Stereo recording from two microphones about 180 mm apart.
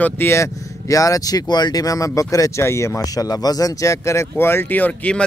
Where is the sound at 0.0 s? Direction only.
15° left (ahead or behind).